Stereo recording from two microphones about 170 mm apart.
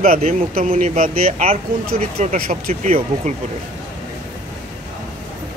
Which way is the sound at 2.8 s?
35° right (ahead or behind).